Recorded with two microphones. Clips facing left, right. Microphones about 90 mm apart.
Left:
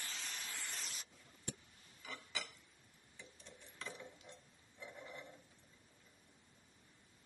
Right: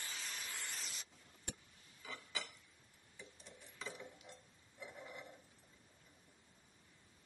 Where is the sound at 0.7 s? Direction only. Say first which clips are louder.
Even; centre (ahead or behind).